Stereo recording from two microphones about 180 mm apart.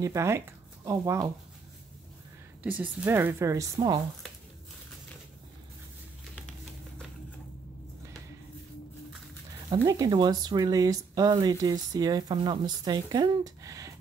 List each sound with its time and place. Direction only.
0.0 s speech: 15° right (ahead or behind)
2.6 s a woman's voice: 10° right (ahead or behind)
9.7 s speech: 20° right (ahead or behind)